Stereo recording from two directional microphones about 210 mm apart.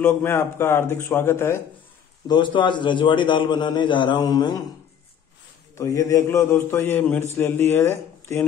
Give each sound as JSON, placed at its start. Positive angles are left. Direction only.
{"t": 0.0, "sound": "speech", "side_deg": 10}
{"t": 2.2, "sound": "a man's voice", "side_deg": 20}
{"t": 5.8, "sound": "speech", "side_deg": 15}